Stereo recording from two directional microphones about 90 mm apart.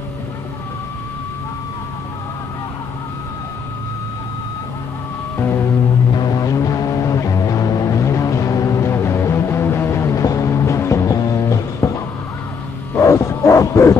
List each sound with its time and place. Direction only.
6.1 s music: 45° left (ahead or behind)
12.9 s bow-wow: 35° left (ahead or behind)